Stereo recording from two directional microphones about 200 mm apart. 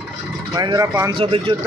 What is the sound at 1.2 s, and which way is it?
Speech, 25° right (ahead or behind).